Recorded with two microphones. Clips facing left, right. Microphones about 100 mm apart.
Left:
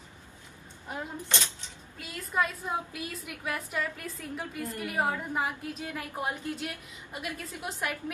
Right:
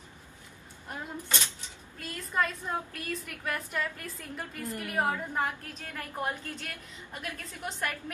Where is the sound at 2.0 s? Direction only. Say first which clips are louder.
Left 1 dB; 5° left (ahead or behind).